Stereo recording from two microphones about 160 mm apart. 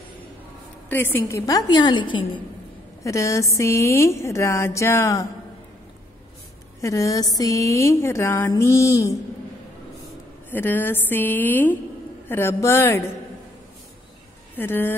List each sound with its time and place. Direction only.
0.8 s speech: 15° left (ahead or behind); by 2.4 s 30° left (ahead or behind)
3.0 s speech: 20° left (ahead or behind)
6.8 s speech: 20° left (ahead or behind)
10.5 s a woman's voice: 15° left (ahead or behind)
14.6 s a woman's voice: 15° left (ahead or behind)